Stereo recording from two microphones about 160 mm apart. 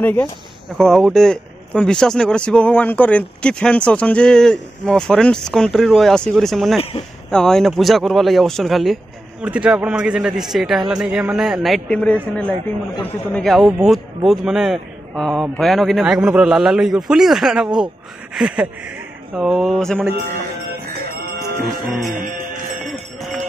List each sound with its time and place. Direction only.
0.0 s speech: 10° left (ahead or behind)
0.7 s speech: centre (ahead or behind)
6.8 s speech: 35° left (ahead or behind)
7.2 s speech: 5° left (ahead or behind)
21.6 s speech: centre (ahead or behind)